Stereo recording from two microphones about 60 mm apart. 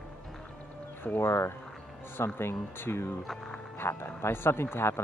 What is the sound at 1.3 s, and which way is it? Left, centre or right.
Speech, left.